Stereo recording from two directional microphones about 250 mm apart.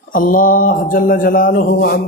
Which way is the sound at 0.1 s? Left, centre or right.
Left.